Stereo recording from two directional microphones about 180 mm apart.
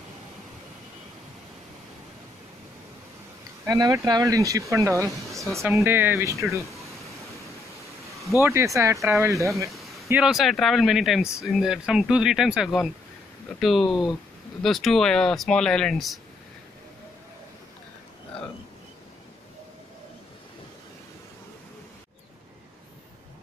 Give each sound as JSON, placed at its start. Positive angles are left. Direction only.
{"t": 3.6, "sound": "speech", "side_deg": -20}
{"t": 8.4, "sound": "speech", "side_deg": -15}
{"t": 9.7, "sound": "a sound", "side_deg": 0}
{"t": 10.0, "sound": "speech", "side_deg": -5}